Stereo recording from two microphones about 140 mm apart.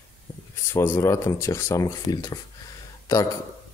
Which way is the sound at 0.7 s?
20° left (ahead or behind).